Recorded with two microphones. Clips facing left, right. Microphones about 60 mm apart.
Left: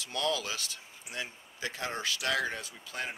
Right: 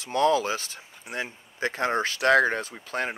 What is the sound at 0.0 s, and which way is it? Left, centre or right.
Speech, right.